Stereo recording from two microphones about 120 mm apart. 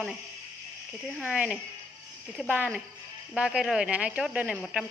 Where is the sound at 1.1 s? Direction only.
10° right (ahead or behind).